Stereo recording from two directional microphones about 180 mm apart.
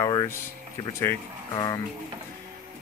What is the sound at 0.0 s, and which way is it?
Air conditioning, 20° left (ahead or behind).